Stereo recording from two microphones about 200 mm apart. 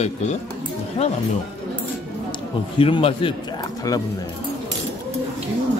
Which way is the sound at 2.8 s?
25° left (ahead or behind).